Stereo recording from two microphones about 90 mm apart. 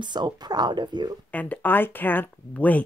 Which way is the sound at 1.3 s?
15° left (ahead or behind).